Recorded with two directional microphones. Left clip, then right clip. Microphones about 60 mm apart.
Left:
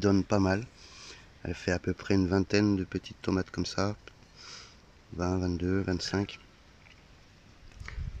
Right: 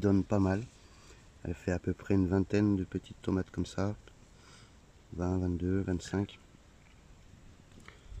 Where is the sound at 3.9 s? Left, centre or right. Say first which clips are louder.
Left 4 dB; centre.